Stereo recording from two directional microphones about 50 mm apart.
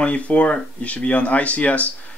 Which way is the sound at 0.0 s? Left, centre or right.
Left.